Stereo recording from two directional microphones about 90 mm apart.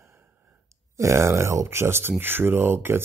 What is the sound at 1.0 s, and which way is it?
Speech, 35° right (ahead or behind).